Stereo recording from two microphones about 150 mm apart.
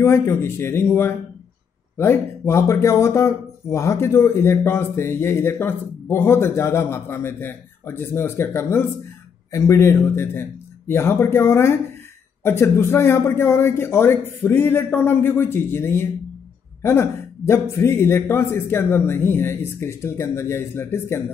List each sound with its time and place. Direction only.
0.0 s speech: 15° left (ahead or behind)